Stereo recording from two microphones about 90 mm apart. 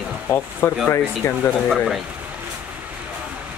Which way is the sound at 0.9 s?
25° left (ahead or behind).